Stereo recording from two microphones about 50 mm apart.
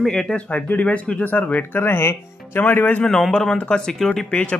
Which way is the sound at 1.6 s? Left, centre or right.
Left.